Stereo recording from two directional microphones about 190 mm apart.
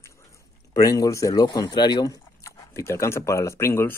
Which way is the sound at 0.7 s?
20° left (ahead or behind).